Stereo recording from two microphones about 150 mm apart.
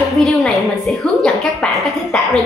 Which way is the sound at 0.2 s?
Centre (ahead or behind).